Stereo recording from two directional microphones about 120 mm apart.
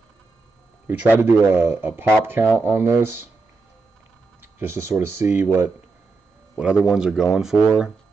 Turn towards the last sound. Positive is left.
turn(degrees=-10)  # may be behind; listen again after turning